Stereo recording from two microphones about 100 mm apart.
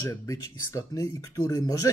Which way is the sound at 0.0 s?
30° left (ahead or behind).